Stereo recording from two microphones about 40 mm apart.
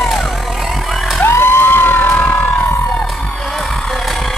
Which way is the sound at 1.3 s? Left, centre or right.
Left.